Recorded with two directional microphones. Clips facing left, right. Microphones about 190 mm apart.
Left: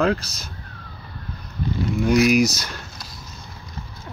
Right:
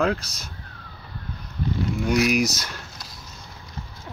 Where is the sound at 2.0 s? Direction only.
Centre (ahead or behind).